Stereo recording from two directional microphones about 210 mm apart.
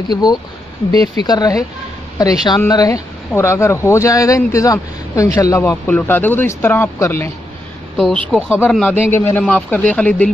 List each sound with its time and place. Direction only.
0.1 s speech: 20° left (ahead or behind)